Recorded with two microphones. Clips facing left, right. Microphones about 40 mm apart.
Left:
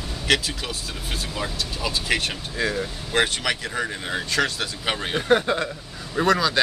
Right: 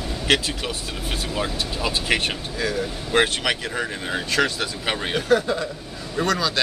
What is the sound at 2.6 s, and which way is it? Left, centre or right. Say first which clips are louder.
Speech: even; centre.